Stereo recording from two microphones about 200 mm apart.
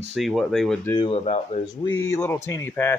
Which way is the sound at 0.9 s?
30° left (ahead or behind).